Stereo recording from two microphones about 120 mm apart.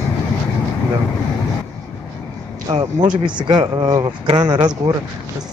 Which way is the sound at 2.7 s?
40° right (ahead or behind).